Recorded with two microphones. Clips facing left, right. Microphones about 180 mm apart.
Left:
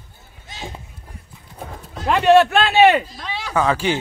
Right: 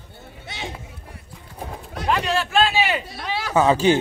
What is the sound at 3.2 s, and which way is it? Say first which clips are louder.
Speech: right 2 dB; 5° right (ahead or behind).